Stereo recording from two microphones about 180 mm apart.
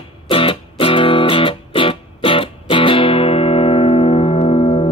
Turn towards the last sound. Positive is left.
turn(degrees=30)  # may be behind; listen again after turning